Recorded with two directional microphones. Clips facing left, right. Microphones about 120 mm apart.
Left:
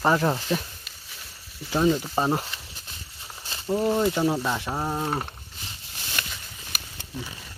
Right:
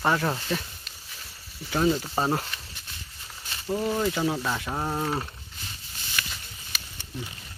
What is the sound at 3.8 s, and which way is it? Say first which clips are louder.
Speech: left 4 dB; 25° left (ahead or behind).